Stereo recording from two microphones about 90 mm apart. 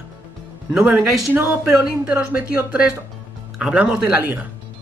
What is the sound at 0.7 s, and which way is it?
Speech, 15° right (ahead or behind).